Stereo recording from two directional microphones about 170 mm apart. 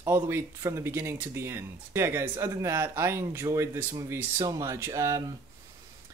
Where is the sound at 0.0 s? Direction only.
15° right (ahead or behind).